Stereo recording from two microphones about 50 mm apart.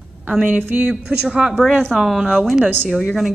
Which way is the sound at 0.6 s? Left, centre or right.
Right.